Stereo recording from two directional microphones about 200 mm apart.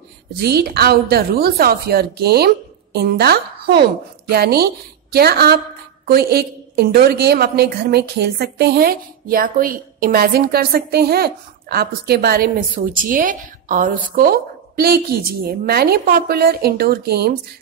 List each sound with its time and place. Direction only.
0.3 s a woman's voice: 55° right (ahead or behind)